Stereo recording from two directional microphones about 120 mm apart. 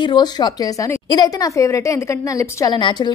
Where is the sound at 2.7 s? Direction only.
40° left (ahead or behind).